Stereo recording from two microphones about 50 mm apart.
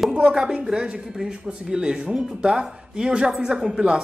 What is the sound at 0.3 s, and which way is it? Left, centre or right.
Speech, centre.